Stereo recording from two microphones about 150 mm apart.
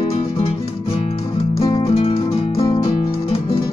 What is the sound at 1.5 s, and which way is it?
Music, 40° left (ahead or behind).